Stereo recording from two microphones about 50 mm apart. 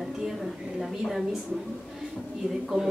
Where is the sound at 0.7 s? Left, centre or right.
Centre.